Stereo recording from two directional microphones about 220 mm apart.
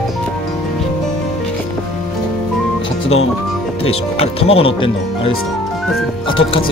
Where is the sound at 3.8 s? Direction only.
25° left (ahead or behind).